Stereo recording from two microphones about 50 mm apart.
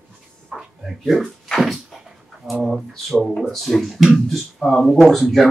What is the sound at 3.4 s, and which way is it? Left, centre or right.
Speech, centre.